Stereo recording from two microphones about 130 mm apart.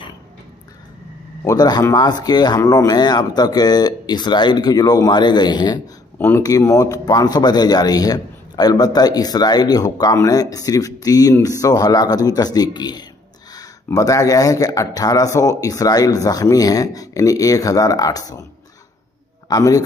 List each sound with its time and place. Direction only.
1.4 s speech: 30° left (ahead or behind)
6.1 s speech: 15° left (ahead or behind)
6.4 s speech: 25° left (ahead or behind)
19.5 s speech: 25° left (ahead or behind)